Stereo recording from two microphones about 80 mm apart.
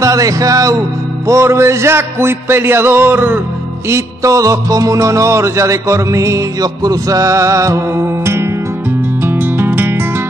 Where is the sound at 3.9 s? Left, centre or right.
Right.